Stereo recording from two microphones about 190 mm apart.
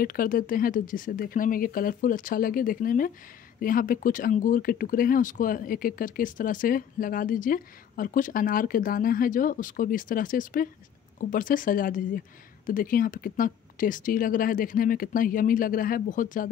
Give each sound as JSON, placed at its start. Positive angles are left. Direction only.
{"t": 0.0, "sound": "speech", "side_deg": 50}